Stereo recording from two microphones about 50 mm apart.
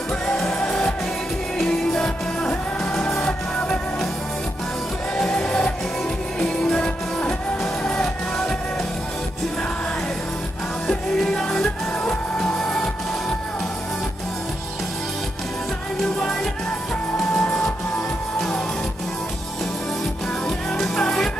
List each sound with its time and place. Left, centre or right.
0.4 s music: centre
5.1 s music: centre
10.9 s music: centre
17.2 s music: centre
20.4 s music: centre